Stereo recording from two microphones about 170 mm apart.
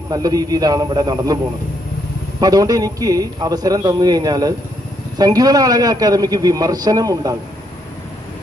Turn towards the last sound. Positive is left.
turn(degrees=-20)  # may be behind; listen again after turning